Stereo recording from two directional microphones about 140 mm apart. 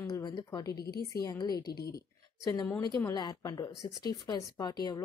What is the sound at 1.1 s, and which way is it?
Speech, 25° left (ahead or behind).